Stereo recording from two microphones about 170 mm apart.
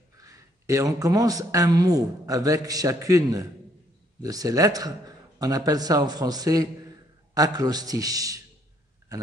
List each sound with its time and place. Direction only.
0.2 s speech: 20° right (ahead or behind)